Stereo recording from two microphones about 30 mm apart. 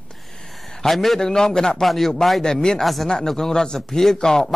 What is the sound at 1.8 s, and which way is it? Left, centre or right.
Speech, centre.